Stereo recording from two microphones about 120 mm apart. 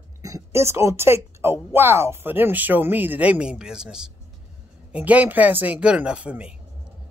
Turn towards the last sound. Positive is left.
turn(degrees=-10)  # may be behind; listen again after turning